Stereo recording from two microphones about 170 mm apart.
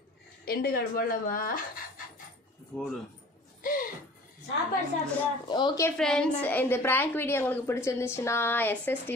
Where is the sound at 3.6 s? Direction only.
55° left (ahead or behind).